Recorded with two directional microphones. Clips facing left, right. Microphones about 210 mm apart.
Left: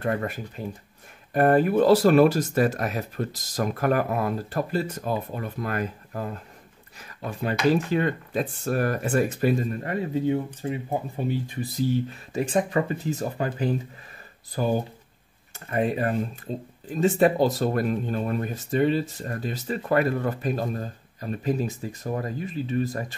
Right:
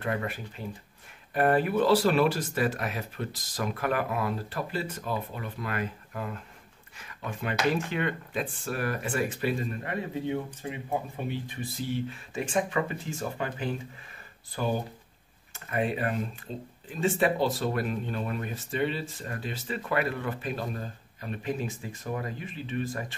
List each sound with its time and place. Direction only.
0.0 s speech: 40° left (ahead or behind)